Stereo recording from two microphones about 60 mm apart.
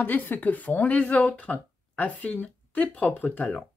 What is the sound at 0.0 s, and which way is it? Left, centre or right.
Speech, left.